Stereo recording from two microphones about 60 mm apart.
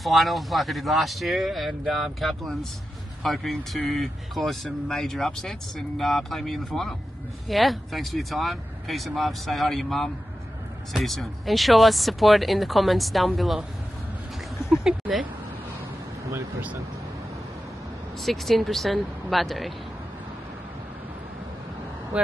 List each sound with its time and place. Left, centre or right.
0.0 s speech: centre
14.7 s speech: centre
18.2 s speech: centre
22.1 s vehicle: centre